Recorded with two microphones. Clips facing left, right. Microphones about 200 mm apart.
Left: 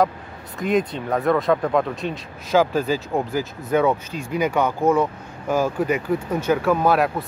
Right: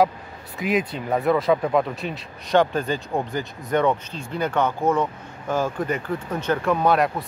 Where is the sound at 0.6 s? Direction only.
5° right (ahead or behind).